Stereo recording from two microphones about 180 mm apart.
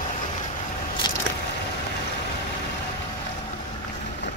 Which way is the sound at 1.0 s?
25° left (ahead or behind).